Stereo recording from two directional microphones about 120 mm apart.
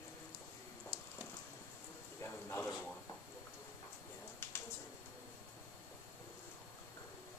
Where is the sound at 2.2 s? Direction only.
15° left (ahead or behind).